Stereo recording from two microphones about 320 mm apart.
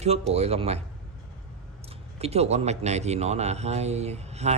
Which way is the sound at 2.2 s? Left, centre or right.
Centre.